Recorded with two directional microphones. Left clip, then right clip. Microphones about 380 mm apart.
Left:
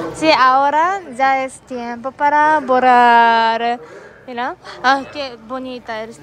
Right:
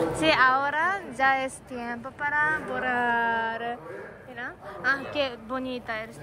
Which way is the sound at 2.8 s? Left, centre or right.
Left.